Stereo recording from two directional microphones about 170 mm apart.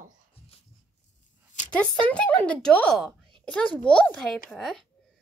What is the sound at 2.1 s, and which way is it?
Speech, 10° left (ahead or behind).